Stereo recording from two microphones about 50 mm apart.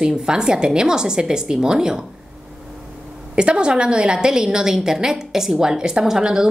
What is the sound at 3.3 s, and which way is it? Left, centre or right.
A woman's voice, centre.